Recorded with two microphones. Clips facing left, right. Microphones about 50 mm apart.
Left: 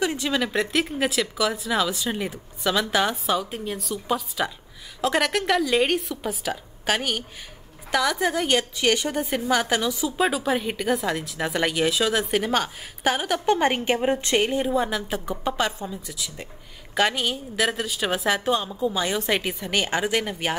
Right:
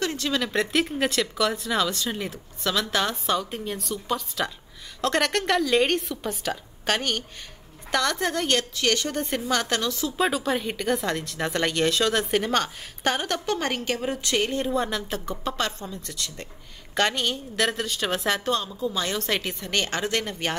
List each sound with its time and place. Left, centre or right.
0.0 s a woman's voice: centre
13.5 s a woman's voice: left
14.4 s a woman's voice: centre